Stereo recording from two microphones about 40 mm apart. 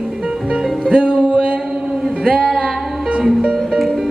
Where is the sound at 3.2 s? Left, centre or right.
Right.